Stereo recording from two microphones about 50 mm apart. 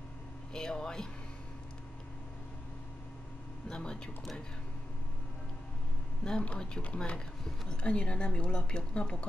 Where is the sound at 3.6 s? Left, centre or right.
Centre.